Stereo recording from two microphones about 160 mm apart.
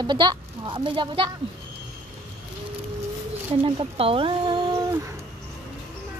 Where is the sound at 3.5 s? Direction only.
35° right (ahead or behind).